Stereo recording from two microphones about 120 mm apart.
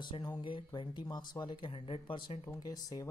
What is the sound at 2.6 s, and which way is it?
Speech, 35° left (ahead or behind).